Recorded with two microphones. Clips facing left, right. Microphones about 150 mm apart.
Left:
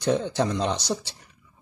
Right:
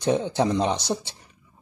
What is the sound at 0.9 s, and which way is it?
Speech, 25° right (ahead or behind).